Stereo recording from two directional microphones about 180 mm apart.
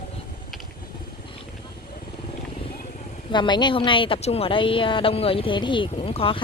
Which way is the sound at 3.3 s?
25° left (ahead or behind).